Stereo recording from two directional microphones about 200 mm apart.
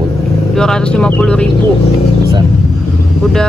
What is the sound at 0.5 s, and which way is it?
Speech, 5° left (ahead or behind).